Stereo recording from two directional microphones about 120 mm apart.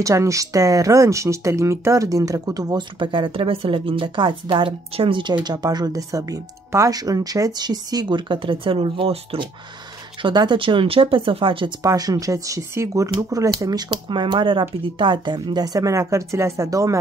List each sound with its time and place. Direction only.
0.0 s speech: 25° right (ahead or behind)
3.0 s speech: 45° right (ahead or behind)
10.2 s speech: 40° right (ahead or behind)
11.8 s speech: 30° right (ahead or behind)
13.8 s speech: 40° right (ahead or behind)